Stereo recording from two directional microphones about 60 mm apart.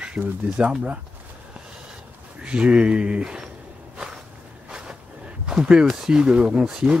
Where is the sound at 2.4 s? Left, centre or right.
Centre.